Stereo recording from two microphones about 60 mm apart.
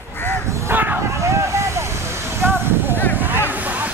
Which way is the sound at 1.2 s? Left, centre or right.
Right.